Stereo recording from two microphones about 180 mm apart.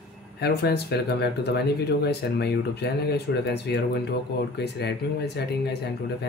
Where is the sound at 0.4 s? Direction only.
65° left (ahead or behind).